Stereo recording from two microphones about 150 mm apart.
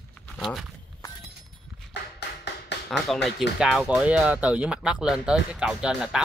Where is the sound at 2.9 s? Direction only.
Centre (ahead or behind).